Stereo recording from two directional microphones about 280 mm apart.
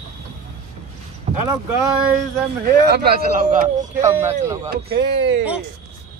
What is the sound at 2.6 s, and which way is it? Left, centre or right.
Speech, right.